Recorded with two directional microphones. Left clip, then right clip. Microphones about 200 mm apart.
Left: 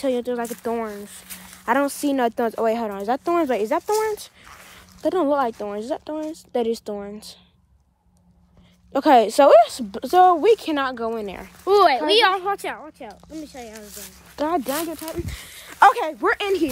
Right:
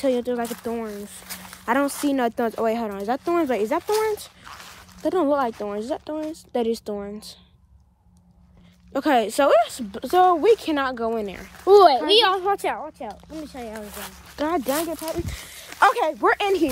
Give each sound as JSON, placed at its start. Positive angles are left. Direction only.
{"t": 0.0, "sound": "speech", "side_deg": 15}
{"t": 1.7, "sound": "speech", "side_deg": 20}
{"t": 5.0, "sound": "speech", "side_deg": 25}
{"t": 8.9, "sound": "speech", "side_deg": 35}
{"t": 11.2, "sound": "speech", "side_deg": 30}
{"t": 11.6, "sound": "speech", "side_deg": 45}
{"t": 12.4, "sound": "a woman's voice", "side_deg": -5}
{"t": 13.3, "sound": "speech", "side_deg": -30}
{"t": 14.3, "sound": "speech", "side_deg": 25}
{"t": 15.0, "sound": "speech", "side_deg": -35}
{"t": 15.2, "sound": "speech", "side_deg": 0}